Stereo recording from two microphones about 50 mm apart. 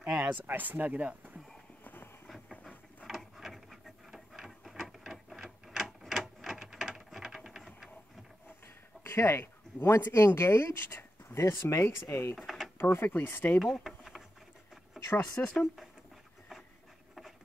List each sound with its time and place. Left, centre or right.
0.5 s speech: right
3.1 s wood: centre
4.3 s a sound: centre
9.0 s speech: left
12.4 s drawer open or close: centre
12.7 s speech: left
13.6 s a sound: centre
15.3 s speech: centre